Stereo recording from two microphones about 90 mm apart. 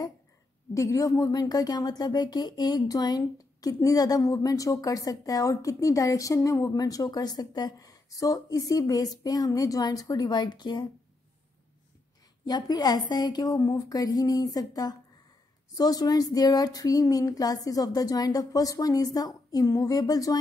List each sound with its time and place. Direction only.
0.7 s speech: 35° left (ahead or behind); by 10.9 s 55° left (ahead or behind)
12.4 s speech: 50° left (ahead or behind)